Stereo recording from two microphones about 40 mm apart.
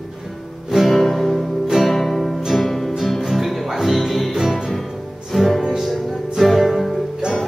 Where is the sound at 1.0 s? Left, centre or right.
Centre.